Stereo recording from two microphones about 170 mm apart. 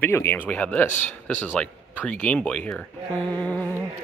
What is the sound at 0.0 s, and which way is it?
Speech, 15° left (ahead or behind).